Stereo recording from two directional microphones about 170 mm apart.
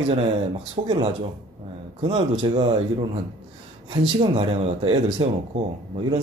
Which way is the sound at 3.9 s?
35° right (ahead or behind).